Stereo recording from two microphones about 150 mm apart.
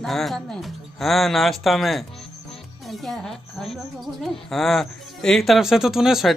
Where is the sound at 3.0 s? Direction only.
Centre (ahead or behind).